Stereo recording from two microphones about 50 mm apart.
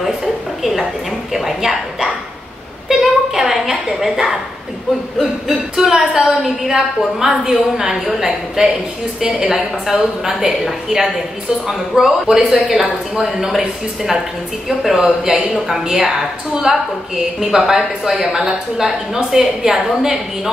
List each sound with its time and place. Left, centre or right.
0.0 s a woman's voice: centre
2.9 s a sound: centre
5.2 s a woman's voice: centre
8.3 s a woman's voice: centre
14.7 s a woman's voice: centre